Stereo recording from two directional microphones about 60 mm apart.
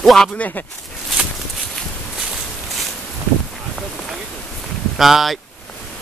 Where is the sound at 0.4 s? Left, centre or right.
Left.